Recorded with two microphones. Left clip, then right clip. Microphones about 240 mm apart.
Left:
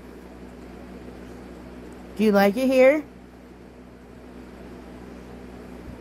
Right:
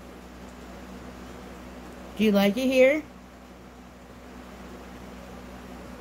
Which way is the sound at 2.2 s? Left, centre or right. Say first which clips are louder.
Left 4 dB; centre.